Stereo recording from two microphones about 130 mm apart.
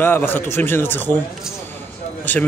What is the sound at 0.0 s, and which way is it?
Speech, 15° left (ahead or behind).